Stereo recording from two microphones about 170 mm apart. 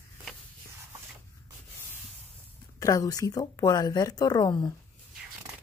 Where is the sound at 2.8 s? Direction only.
20° left (ahead or behind).